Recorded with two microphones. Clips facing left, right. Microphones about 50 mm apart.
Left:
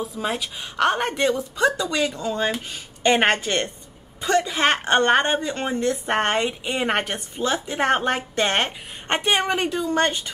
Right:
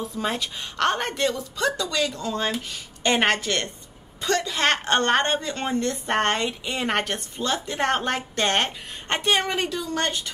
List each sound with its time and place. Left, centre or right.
0.0 s a woman's voice: centre; by 10.3 s left